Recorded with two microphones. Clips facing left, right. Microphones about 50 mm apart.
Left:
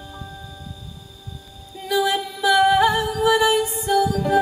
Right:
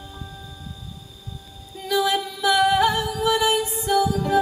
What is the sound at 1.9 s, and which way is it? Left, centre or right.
Music, centre.